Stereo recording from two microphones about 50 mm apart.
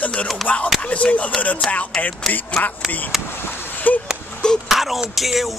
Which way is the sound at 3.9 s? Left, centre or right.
Left.